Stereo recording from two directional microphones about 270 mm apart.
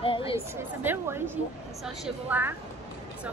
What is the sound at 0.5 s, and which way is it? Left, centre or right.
A woman's voice, centre.